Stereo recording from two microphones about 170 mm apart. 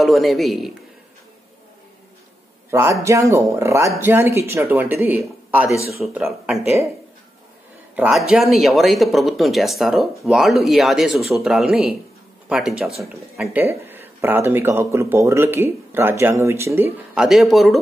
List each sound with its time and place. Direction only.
0.0 s speech: centre (ahead or behind)
2.7 s a man's voice: 15° right (ahead or behind)
7.9 s speech: 10° right (ahead or behind)